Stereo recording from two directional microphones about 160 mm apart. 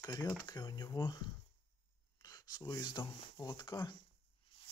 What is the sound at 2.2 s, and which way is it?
Speech, 25° left (ahead or behind).